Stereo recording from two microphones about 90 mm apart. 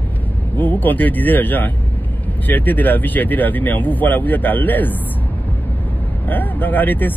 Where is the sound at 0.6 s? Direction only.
20° left (ahead or behind).